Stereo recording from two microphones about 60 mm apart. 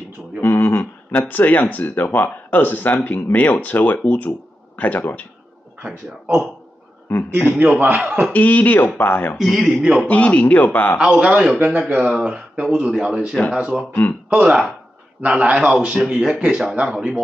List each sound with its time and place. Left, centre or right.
0.4 s a sound: left
1.3 s speech: left
5.8 s speech: right
7.1 s speech: left
7.5 s speech: right
8.3 s speech: left
9.4 s a man's voice: centre
10.0 s speech: left
11.0 s speech: centre